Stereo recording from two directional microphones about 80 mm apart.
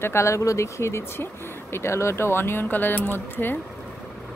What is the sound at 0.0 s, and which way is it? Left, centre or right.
Speech, left.